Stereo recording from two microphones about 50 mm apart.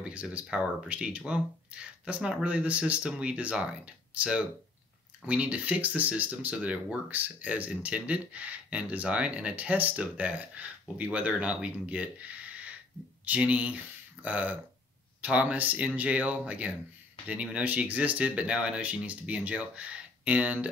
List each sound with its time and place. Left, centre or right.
0.0 s speech: right